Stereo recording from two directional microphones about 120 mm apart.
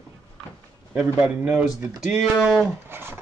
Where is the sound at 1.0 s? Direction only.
10° right (ahead or behind).